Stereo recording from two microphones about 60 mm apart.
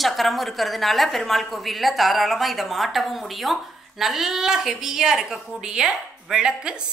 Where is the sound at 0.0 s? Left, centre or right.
Centre.